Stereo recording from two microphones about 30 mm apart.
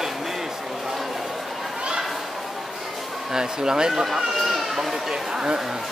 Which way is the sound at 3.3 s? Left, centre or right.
Right.